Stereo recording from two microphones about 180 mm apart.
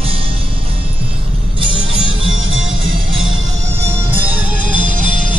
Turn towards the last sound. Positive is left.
turn(degrees=-45)  # may be behind; listen again after turning